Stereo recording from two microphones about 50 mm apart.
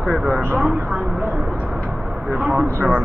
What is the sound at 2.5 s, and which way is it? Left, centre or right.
Speech, centre.